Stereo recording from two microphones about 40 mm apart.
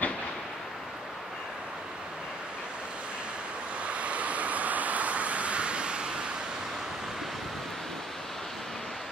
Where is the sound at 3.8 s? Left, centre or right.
Right.